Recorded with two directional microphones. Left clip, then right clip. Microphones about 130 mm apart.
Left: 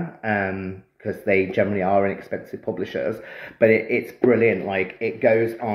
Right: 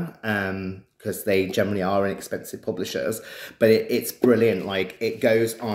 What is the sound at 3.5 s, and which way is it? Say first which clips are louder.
Speech: left 1 dB; 35° right (ahead or behind).